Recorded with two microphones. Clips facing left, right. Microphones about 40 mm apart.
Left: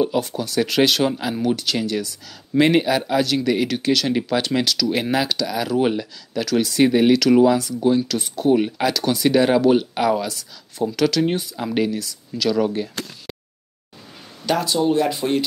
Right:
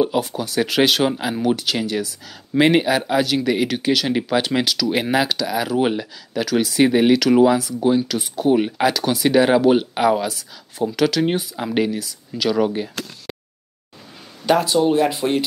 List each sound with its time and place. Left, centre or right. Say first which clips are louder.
0.0 s speech: right 1 dB; centre
14.4 s speech: right 3 dB; centre